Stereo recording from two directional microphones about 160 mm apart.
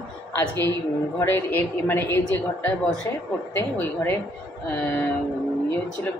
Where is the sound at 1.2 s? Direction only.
15° left (ahead or behind).